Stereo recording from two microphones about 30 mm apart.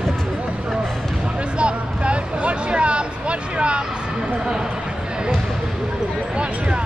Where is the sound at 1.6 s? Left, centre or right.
Right.